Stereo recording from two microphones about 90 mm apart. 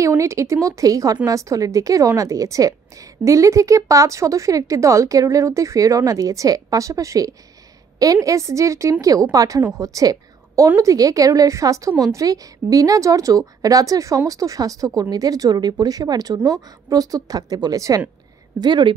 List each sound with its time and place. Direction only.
0.0 s a woman's voice: 35° right (ahead or behind)
18.6 s speech: 55° right (ahead or behind)